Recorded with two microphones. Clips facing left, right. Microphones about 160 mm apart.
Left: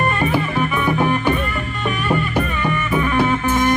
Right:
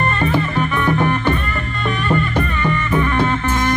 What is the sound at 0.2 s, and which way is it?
Music, 10° left (ahead or behind).